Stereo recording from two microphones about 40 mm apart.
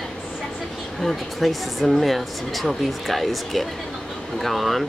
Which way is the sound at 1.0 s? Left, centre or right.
Centre.